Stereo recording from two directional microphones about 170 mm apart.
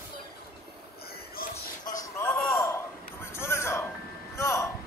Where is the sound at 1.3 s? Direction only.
50° left (ahead or behind).